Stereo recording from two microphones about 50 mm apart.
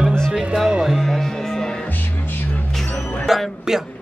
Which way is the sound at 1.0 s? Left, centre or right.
Centre.